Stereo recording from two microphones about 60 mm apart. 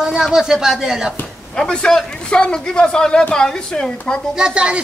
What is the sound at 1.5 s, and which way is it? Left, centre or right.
A man's voice, centre.